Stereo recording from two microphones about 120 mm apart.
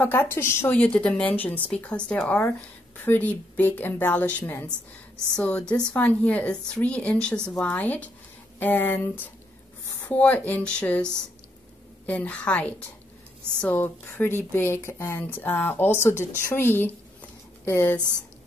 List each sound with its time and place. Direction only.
0.0 s speech: 20° left (ahead or behind)
12.1 s speech: 10° left (ahead or behind)